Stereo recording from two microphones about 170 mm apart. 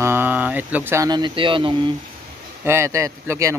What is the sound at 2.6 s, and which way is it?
Speech, 15° right (ahead or behind).